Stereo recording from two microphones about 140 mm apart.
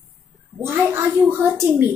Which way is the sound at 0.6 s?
15° right (ahead or behind).